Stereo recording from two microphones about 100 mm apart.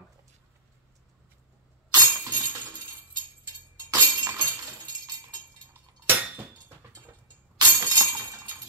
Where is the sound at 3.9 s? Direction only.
20° right (ahead or behind).